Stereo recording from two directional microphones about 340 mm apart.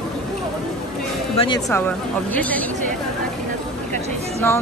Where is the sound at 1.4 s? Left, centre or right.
Centre.